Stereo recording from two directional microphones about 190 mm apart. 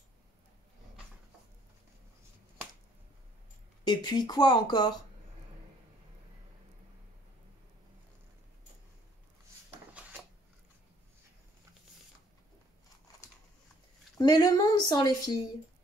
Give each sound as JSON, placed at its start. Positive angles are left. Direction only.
{"t": 3.8, "sound": "speech", "side_deg": 20}
{"t": 14.1, "sound": "speech", "side_deg": 20}